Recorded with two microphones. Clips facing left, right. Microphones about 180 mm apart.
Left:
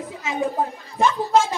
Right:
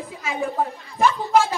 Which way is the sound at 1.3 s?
20° left (ahead or behind).